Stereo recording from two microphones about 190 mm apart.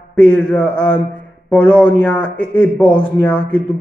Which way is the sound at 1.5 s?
5° left (ahead or behind).